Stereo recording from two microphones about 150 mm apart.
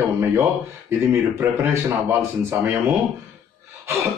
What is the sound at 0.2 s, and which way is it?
Speech, 15° right (ahead or behind).